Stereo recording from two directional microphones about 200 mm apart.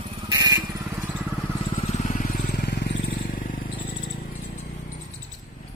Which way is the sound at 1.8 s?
35° left (ahead or behind).